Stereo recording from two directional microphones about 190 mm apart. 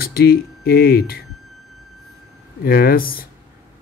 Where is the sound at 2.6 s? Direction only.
50° left (ahead or behind).